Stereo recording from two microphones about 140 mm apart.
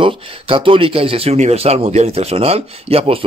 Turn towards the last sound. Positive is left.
turn(degrees=-45)  # may be behind; listen again after turning